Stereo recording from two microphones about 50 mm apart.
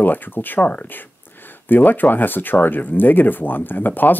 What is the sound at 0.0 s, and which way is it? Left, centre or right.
Speech, left.